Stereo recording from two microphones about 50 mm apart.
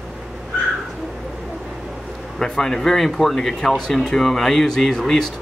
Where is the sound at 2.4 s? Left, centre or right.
Centre.